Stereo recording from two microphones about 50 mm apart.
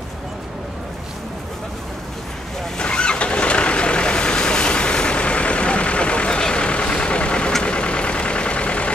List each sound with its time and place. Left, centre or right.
2.8 s vehicle: left